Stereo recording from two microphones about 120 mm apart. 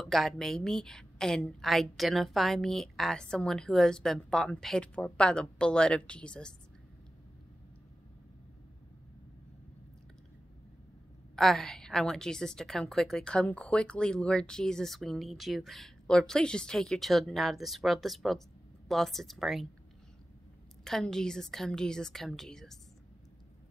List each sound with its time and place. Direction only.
0.0 s a woman's voice: centre (ahead or behind)
11.3 s a woman's voice: 5° left (ahead or behind)
20.8 s a woman's voice: 5° left (ahead or behind)